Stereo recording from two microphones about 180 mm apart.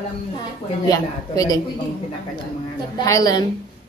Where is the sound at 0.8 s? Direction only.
20° left (ahead or behind).